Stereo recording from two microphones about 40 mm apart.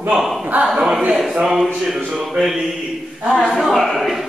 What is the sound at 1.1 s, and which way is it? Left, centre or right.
Speech, centre.